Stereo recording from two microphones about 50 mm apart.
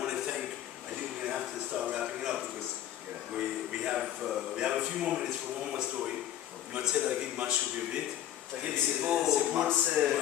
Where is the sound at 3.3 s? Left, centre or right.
Centre.